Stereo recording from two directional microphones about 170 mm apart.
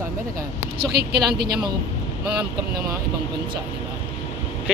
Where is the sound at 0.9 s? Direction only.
70° right (ahead or behind).